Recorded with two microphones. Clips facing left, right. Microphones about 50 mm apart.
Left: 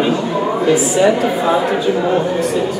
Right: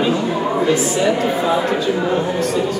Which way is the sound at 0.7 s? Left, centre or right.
Centre.